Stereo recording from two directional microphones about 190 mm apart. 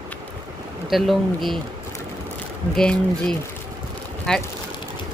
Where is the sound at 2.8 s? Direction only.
5° left (ahead or behind).